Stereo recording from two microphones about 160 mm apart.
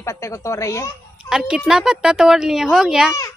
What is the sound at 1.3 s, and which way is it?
A child's voice, 5° right (ahead or behind).